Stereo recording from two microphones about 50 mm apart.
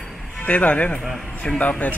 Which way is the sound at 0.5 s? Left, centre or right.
Left.